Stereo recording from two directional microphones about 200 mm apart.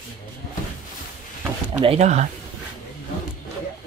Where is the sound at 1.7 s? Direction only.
25° right (ahead or behind).